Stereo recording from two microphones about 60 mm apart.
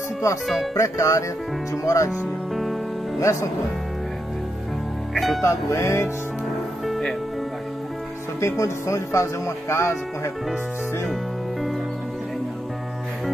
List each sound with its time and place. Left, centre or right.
0.7 s music: left
2.0 s music: centre
3.2 s speech: left
5.1 s speech: centre
5.4 s speech: left
6.9 s music: centre
8.4 s speech: left